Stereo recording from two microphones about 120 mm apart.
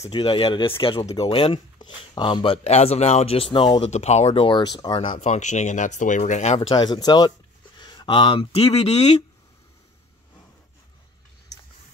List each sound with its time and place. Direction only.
0.1 s speech: 45° left (ahead or behind)
2.6 s speech: 60° left (ahead or behind)
3.9 s speech: 65° left (ahead or behind)
4.5 s speech: 40° left (ahead or behind)
5.1 s speech: 80° left
6.7 s speech: 35° left (ahead or behind); by 9.2 s 65° left (ahead or behind)